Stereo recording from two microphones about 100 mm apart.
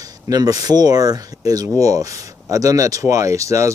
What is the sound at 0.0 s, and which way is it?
Speech, 40° right (ahead or behind).